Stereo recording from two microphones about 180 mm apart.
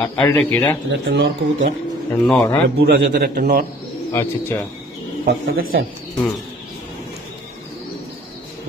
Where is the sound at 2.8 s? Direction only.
60° right (ahead or behind).